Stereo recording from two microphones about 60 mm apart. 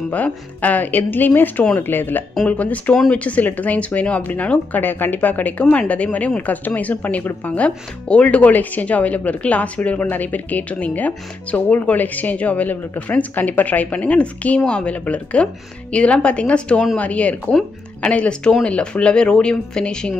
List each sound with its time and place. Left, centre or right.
0.1 s speech: left